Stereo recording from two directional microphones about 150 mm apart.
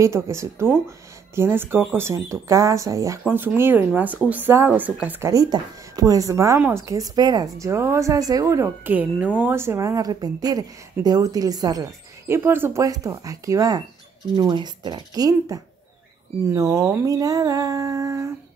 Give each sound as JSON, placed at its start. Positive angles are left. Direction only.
{"t": 0.0, "sound": "speech", "side_deg": -20}
{"t": 5.3, "sound": "speech", "side_deg": -25}